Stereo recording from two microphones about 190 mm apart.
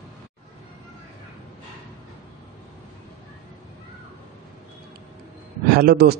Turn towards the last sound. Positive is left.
turn(degrees=-55)  # may be behind; listen again after turning